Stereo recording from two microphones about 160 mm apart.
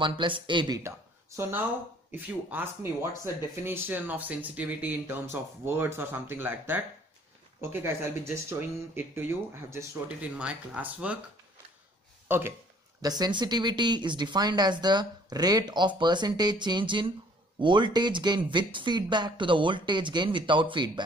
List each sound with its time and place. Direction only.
0.0 s speech: 30° right (ahead or behind)
0.8 s a sound: 15° right (ahead or behind)
2.1 s speech: 10° right (ahead or behind)
12.3 s speech: 15° right (ahead or behind)
13.0 s speech: 25° right (ahead or behind)